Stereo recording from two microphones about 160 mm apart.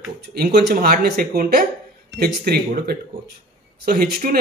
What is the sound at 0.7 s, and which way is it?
Speech, 70° right (ahead or behind).